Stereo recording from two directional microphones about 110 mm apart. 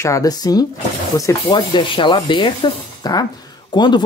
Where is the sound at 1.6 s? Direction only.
50° left (ahead or behind).